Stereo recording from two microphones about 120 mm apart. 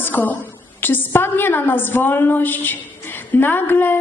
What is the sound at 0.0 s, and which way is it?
A woman's voice, 15° left (ahead or behind).